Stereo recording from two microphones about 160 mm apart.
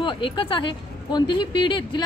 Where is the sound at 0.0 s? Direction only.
30° left (ahead or behind).